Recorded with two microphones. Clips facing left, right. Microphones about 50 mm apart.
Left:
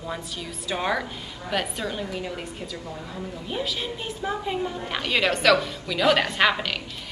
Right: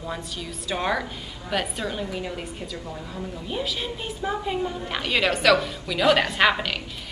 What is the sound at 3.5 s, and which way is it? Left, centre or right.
A woman's voice, centre.